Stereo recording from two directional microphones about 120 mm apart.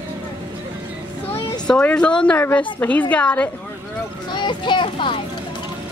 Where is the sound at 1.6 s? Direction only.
10° left (ahead or behind).